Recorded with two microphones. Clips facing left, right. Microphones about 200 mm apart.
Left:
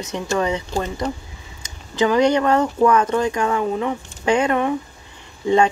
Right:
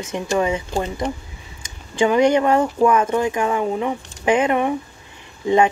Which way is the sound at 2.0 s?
20° right (ahead or behind).